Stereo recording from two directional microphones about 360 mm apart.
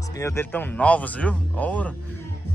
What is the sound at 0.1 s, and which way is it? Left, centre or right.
A man's voice, centre.